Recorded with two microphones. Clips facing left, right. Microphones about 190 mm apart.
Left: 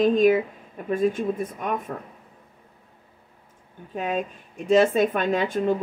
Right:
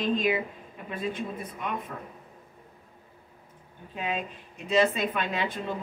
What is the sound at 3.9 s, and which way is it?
Speech, 45° left (ahead or behind).